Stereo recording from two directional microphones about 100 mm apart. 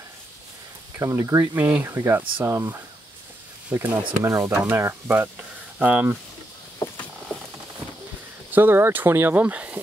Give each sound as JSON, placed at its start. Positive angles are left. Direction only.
{"t": 0.9, "sound": "speech", "side_deg": -25}
{"t": 3.7, "sound": "speech", "side_deg": -25}
{"t": 8.5, "sound": "speech", "side_deg": -20}